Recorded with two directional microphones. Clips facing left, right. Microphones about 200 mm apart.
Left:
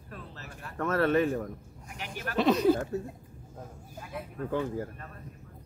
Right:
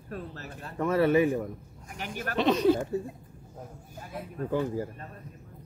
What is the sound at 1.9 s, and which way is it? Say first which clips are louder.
Speech: right 3 dB; 45° right (ahead or behind).